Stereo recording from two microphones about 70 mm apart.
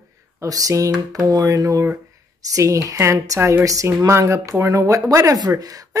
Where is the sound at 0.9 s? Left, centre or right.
Right.